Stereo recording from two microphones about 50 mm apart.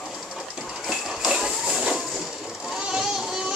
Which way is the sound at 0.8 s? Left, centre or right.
Centre.